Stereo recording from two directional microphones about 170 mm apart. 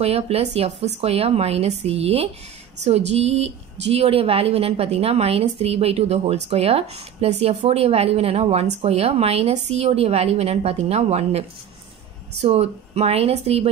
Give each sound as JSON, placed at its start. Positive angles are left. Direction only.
{"t": 0.0, "sound": "a woman's voice", "side_deg": -35}